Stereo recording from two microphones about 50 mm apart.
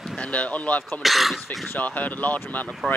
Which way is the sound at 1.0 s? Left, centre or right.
Centre.